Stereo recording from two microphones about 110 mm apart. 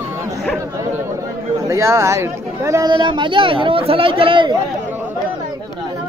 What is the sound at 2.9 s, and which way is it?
Speech, 45° right (ahead or behind).